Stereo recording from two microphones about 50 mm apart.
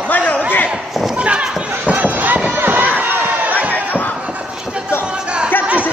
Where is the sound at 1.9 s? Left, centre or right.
Right.